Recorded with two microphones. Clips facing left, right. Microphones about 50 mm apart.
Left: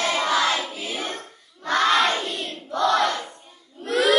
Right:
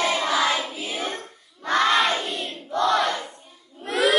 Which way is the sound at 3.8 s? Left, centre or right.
Centre.